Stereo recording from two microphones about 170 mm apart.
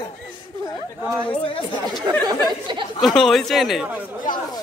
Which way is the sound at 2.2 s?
25° right (ahead or behind).